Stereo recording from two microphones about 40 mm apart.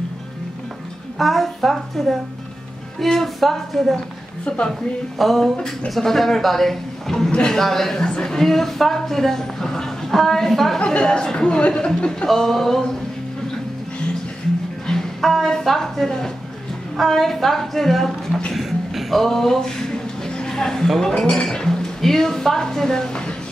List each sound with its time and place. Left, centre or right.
1.1 s a man's voice: centre
4.5 s a man's voice: left
5.2 s a man's voice: centre
7.2 s a man's voice: centre
7.5 s a woman's voice: centre
10.8 s a man's voice: left
12.3 s a woman's voice: centre
14.9 s music: centre
15.6 s a woman's voice: centre
18.5 s a sound: centre
21.2 s a woman's voice: centre